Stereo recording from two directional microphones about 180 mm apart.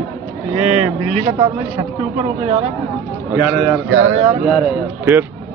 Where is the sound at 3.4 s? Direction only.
5° right (ahead or behind).